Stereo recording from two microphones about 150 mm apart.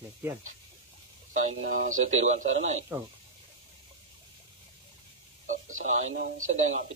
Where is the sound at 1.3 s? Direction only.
55° right (ahead or behind).